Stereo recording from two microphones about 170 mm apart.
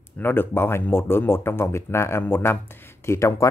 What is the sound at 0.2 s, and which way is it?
Speech, 10° left (ahead or behind).